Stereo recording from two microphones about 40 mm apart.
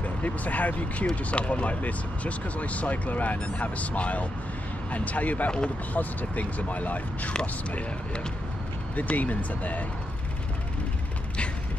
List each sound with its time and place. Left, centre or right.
0.2 s speech: left
9.1 s speech: left